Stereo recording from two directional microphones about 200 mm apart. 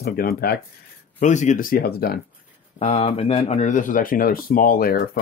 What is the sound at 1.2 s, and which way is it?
Speech, 35° left (ahead or behind).